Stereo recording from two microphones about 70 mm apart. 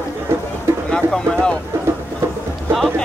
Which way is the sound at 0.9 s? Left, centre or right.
Centre.